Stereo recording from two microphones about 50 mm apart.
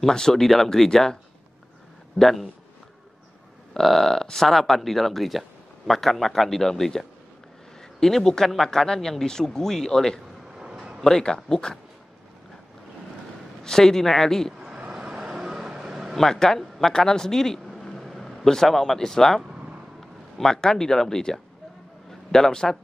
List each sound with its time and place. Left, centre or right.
0.0 s speech: centre
2.1 s speech: centre
3.7 s speech: centre
10.5 s a sound: centre
11.0 s speech: centre
13.7 s speech: centre
14.9 s vehicle: centre
16.2 s a man's voice: centre